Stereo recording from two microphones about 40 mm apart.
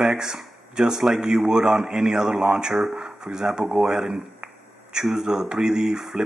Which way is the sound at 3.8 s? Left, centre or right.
Centre.